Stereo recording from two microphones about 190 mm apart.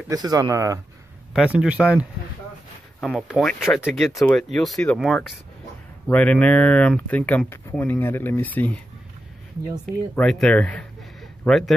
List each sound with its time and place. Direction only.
0.1 s speech: 20° right (ahead or behind)
1.3 s speech: 5° right (ahead or behind)
10.1 s speech: 5° left (ahead or behind)